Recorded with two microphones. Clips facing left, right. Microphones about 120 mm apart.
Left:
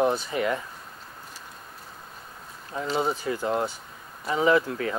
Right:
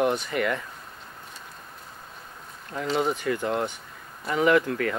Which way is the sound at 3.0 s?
30° left (ahead or behind).